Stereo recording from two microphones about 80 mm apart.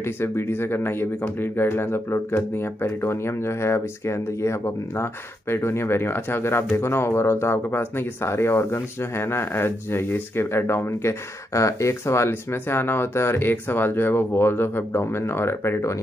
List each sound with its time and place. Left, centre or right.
0.0 s speech: left